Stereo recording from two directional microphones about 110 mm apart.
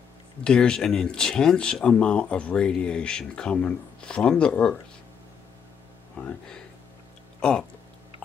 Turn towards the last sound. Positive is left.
turn(degrees=5)  # may be behind; listen again after turning